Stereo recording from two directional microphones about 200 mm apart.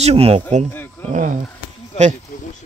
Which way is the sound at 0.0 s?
30° right (ahead or behind).